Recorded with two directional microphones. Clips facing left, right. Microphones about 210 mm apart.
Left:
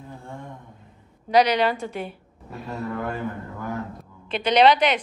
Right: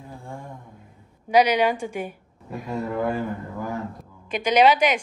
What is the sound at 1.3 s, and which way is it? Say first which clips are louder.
Speech: right 1 dB; 10° right (ahead or behind).